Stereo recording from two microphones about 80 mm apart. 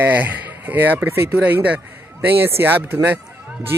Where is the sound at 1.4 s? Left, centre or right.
Centre.